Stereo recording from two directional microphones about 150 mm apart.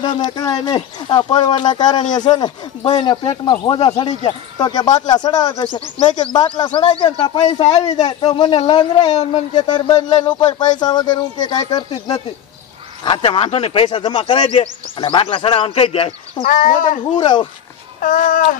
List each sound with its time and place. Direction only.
0.3 s a man's voice: 25° left (ahead or behind)
9.1 s speech: 50° left (ahead or behind)
9.5 s a man's voice: 30° left (ahead or behind)
16.4 s speech: 60° left (ahead or behind)
17.2 s speech: 30° left (ahead or behind)
18.0 s speech: 60° left (ahead or behind)